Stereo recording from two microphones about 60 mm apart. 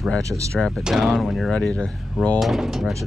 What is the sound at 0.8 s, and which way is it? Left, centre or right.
Speech, centre.